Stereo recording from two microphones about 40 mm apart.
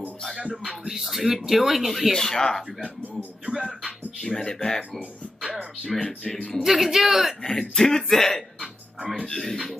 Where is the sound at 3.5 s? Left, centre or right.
Centre.